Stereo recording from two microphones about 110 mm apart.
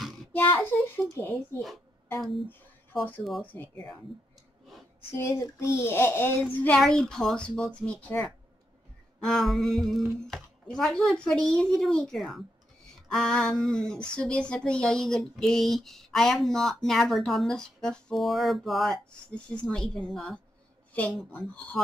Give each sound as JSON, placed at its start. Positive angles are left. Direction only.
{"t": 0.3, "sound": "child singing", "side_deg": 20}
{"t": 1.1, "sound": "a child's voice", "side_deg": 20}
{"t": 2.1, "sound": "a sound", "side_deg": 0}
{"t": 3.5, "sound": "speech", "side_deg": 15}
{"t": 5.1, "sound": "a child's voice", "side_deg": 25}
{"t": 6.8, "sound": "speech", "side_deg": 5}
{"t": 9.2, "sound": "a sound", "side_deg": 5}
{"t": 19.3, "sound": "speech", "side_deg": 10}